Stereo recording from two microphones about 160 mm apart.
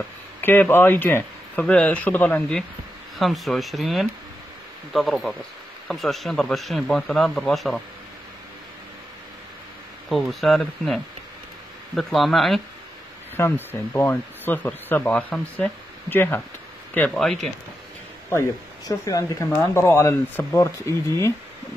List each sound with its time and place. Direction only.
0.4 s speech: 15° left (ahead or behind)
10.0 s speech: centre (ahead or behind)
13.7 s speech: 15° left (ahead or behind)
18.9 s speech: 20° left (ahead or behind)